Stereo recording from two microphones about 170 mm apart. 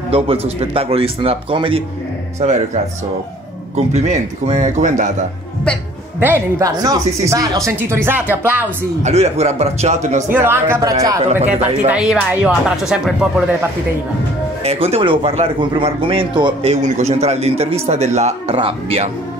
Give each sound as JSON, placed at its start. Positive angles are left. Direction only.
{"t": 0.1, "sound": "a man's voice", "side_deg": -35}
{"t": 2.4, "sound": "speech", "side_deg": -45}
{"t": 6.1, "sound": "speech", "side_deg": -15}
{"t": 9.0, "sound": "a man's voice", "side_deg": -40}
{"t": 10.3, "sound": "speech", "side_deg": -15}
{"t": 11.9, "sound": "speech", "side_deg": -5}
{"t": 14.6, "sound": "a man's voice", "side_deg": -35}
{"t": 16.8, "sound": "a man's voice", "side_deg": -40}